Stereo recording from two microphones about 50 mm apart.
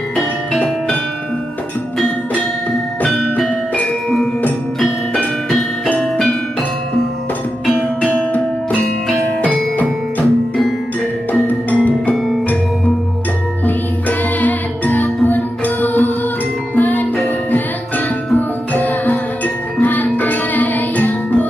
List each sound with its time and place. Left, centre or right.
4.7 s music: centre
9.4 s music: left
11.4 s music: left
13.7 s music: left